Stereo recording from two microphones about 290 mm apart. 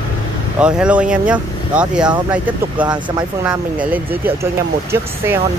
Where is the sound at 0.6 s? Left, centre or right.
Centre.